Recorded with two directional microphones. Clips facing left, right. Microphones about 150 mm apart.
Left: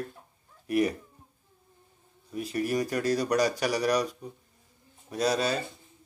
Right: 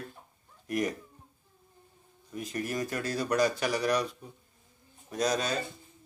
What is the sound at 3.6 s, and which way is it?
Speech, 40° left (ahead or behind).